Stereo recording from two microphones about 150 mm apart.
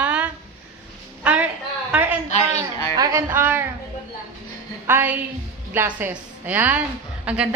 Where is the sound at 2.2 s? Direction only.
50° left (ahead or behind).